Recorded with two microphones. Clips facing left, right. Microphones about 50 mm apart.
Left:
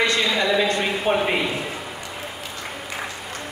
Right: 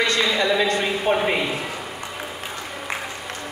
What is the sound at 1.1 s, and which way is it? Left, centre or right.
Speech, centre.